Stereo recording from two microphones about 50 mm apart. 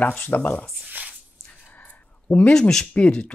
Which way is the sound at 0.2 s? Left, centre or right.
Left.